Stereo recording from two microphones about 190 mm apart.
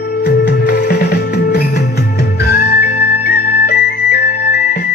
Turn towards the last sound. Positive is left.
turn(degrees=55)  # may be behind; listen again after turning